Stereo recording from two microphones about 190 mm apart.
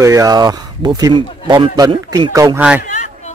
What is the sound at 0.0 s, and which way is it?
Speech, 15° right (ahead or behind).